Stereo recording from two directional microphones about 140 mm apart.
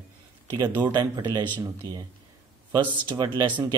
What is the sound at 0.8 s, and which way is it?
Speech, 30° right (ahead or behind).